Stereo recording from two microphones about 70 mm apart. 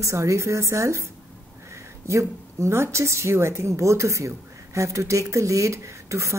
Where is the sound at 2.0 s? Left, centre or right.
Right.